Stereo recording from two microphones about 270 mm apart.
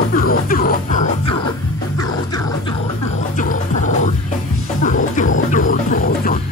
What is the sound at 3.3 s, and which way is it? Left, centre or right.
Music, left.